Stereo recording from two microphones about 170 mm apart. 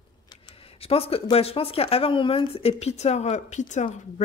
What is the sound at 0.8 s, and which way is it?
Speech, 35° left (ahead or behind).